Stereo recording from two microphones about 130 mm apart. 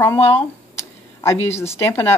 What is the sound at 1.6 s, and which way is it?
Speech, 20° left (ahead or behind).